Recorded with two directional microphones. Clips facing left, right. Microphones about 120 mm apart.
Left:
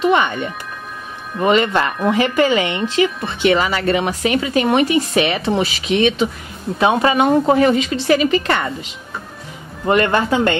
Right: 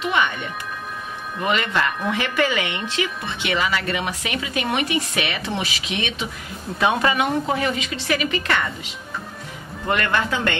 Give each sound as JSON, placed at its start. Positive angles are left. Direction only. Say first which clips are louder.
{"t": 1.4, "sound": "speech", "louder": "left 7 dB", "side_deg": 35}
{"t": 3.4, "sound": "speech", "louder": "left 8 dB", "side_deg": 40}
{"t": 6.8, "sound": "speech", "louder": "left 5 dB", "side_deg": 25}
{"t": 9.8, "sound": "speech", "louder": "left 7 dB", "side_deg": 30}